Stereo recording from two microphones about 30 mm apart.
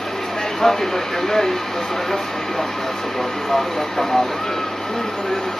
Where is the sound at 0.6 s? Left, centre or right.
Centre.